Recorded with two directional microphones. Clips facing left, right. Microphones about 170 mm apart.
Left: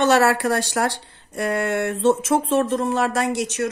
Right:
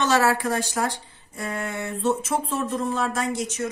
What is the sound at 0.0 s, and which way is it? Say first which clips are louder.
Speech: left 4 dB; 65° left (ahead or behind).